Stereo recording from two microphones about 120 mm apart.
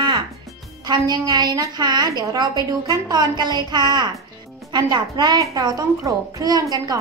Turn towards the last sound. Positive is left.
turn(degrees=-30)  # may be behind; listen again after turning